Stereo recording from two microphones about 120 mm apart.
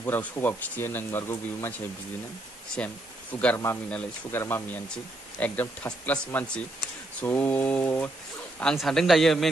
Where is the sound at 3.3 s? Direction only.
15° left (ahead or behind).